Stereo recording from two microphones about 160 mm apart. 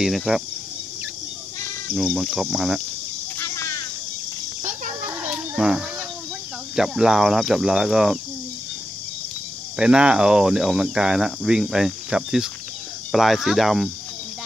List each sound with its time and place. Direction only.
0.0 s speech: centre (ahead or behind)
2.1 s speech: centre (ahead or behind)
3.3 s cricket: 15° left (ahead or behind)
5.3 s a sound: 5° right (ahead or behind)
6.7 s speech: 5° right (ahead or behind)
9.8 s speech: 5° right (ahead or behind)